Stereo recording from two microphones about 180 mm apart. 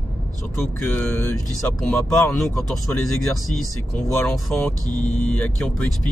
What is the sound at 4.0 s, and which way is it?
Speech, centre (ahead or behind).